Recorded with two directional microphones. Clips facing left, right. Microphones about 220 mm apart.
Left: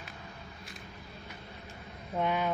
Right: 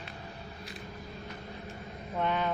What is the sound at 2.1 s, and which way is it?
Speech, 10° left (ahead or behind).